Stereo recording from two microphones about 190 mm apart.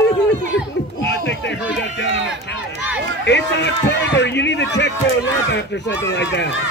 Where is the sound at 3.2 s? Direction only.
65° left (ahead or behind).